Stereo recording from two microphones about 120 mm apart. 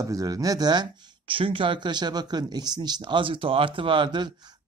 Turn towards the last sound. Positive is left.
turn(degrees=-40)  # may be behind; listen again after turning